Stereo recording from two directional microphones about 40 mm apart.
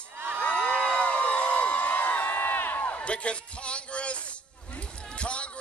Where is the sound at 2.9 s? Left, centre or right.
Left.